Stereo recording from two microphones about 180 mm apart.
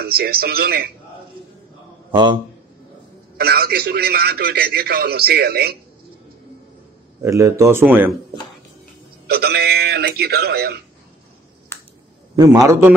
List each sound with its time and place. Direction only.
0.0 s a man's voice: 55° right (ahead or behind)
3.3 s a man's voice: 60° right (ahead or behind)
7.2 s speech: 15° right (ahead or behind)
9.3 s a man's voice: 60° right (ahead or behind)
12.4 s speech: 20° right (ahead or behind)